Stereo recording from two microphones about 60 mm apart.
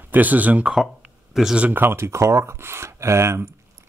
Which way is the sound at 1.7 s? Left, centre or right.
Right.